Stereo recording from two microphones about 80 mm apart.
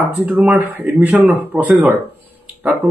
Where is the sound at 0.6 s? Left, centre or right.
Right.